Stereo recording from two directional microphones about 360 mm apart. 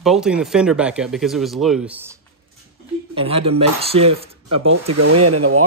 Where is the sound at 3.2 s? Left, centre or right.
Centre.